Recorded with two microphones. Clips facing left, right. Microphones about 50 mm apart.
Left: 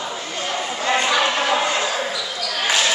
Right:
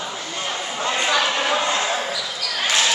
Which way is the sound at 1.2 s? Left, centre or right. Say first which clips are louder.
Left 2 dB; centre.